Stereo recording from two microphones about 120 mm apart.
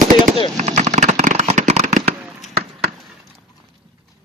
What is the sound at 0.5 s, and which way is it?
Firecracker, 70° right (ahead or behind).